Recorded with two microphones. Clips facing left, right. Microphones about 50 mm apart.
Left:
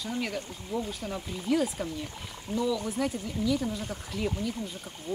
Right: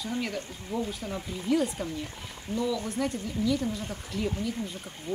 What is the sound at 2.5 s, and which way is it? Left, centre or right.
Speech, left.